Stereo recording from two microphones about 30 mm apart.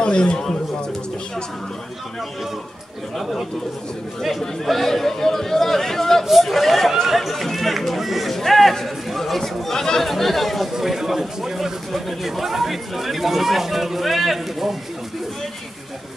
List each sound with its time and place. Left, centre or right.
0.0 s speech: left
3.2 s speech: centre
4.6 s speech: centre
8.3 s a man's voice: centre
9.8 s speech: centre
10.0 s speech: centre
10.7 s speech: centre